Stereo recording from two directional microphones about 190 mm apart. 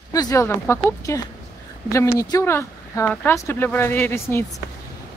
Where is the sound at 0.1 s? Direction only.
20° left (ahead or behind).